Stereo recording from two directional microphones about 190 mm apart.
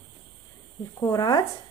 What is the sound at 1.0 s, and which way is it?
Speech, 20° left (ahead or behind).